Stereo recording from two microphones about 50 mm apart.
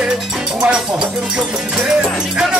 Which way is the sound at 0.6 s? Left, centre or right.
Centre.